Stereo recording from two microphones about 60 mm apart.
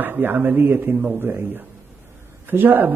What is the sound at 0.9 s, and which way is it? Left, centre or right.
Speech, centre.